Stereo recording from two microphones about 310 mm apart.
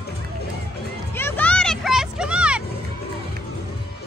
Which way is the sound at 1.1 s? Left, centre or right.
Centre.